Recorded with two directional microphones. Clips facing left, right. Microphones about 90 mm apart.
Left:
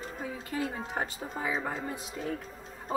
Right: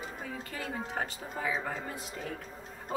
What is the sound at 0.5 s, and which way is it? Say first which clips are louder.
A woman's voice: left 5 dB; 20° left (ahead or behind).